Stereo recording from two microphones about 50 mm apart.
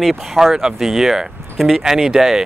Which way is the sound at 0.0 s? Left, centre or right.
Centre.